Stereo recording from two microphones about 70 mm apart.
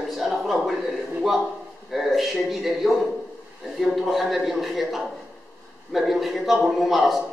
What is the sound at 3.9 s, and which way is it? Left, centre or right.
A man's voice, centre.